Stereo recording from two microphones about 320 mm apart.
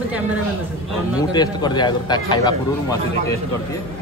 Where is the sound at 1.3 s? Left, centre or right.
Centre.